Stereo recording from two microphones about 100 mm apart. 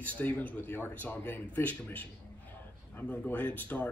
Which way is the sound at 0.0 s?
15° left (ahead or behind).